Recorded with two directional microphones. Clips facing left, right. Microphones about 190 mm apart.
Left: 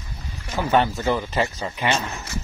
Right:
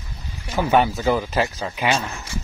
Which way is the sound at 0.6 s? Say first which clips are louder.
Right 2 dB; 15° right (ahead or behind).